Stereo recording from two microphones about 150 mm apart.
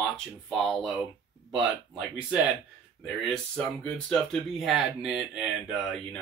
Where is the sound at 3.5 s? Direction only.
5° left (ahead or behind).